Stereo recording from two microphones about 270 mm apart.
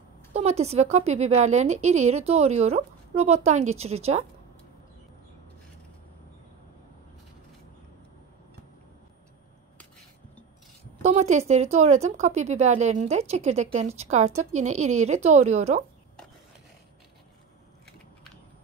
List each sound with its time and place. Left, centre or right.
0.3 s speech: right
11.0 s speech: right